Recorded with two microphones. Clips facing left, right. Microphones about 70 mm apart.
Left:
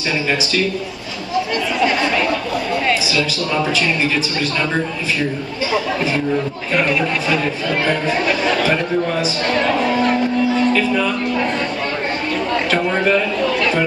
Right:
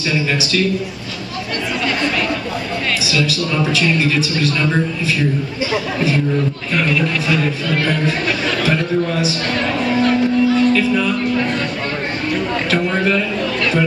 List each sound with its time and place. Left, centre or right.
3.1 s a man's voice: centre
6.7 s speech: centre
7.2 s a man's voice: centre
12.7 s a man's voice: centre